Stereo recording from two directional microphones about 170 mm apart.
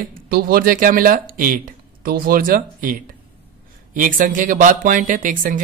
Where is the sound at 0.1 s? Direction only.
60° right (ahead or behind).